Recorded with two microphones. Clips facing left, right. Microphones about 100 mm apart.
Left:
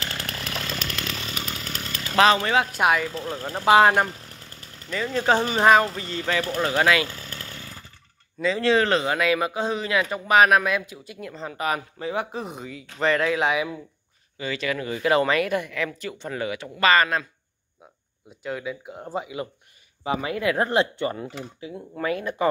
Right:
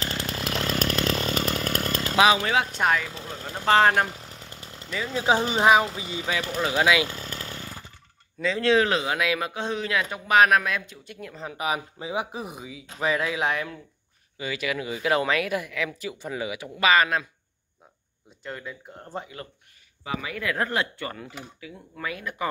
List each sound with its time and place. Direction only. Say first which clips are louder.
0.2 s chainsaw: right 3 dB; 20° right (ahead or behind)
0.7 s chainsaw: right 6 dB; 35° right (ahead or behind)
2.1 s a man's voice: left 2 dB; 10° right (ahead or behind)
4.4 s chainsaw: right 3 dB; 20° right (ahead or behind)
4.9 s speech: left 2 dB; 5° right (ahead or behind)
8.4 s a man's voice: left 1 dB; centre (ahead or behind)
14.4 s speech: left 2 dB; 10° right (ahead or behind)
18.4 s speech: left 6 dB; 5° left (ahead or behind)
20.0 s speech: left 6 dB; 30° left (ahead or behind)
21.9 s speech: left 7 dB; 35° left (ahead or behind)